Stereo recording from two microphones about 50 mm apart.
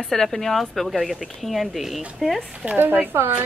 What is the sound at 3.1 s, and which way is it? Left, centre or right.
Speech, right.